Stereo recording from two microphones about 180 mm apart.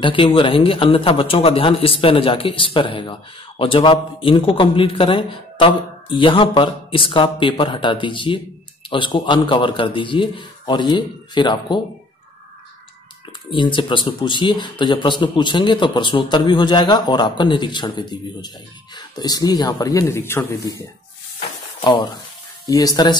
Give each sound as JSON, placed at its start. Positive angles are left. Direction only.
{"t": 0.0, "sound": "speech", "side_deg": 30}
{"t": 13.5, "sound": "speech", "side_deg": 25}
{"t": 21.8, "sound": "speech", "side_deg": 25}